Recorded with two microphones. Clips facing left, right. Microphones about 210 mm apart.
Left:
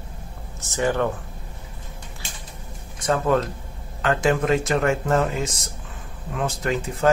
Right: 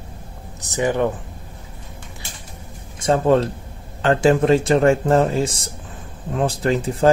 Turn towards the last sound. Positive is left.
turn(degrees=-30)  # may be behind; listen again after turning